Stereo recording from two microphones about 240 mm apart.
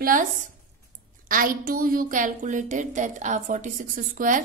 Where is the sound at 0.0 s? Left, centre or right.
Right.